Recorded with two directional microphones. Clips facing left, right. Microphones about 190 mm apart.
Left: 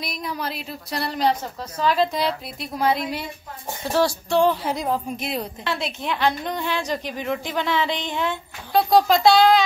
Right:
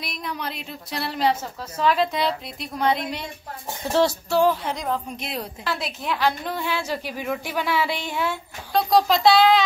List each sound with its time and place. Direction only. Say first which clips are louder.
0.0 s a woman's voice: left 2 dB; centre (ahead or behind)
3.9 s music: right 1 dB; 20° right (ahead or behind)
4.3 s a woman's voice: left 2 dB; 5° right (ahead or behind)
4.6 s a woman's voice: left 3 dB; 10° left (ahead or behind)